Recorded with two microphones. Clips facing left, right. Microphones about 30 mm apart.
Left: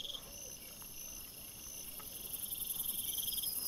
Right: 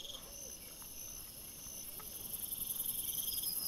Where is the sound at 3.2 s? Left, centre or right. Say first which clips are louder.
Left 3 dB; centre.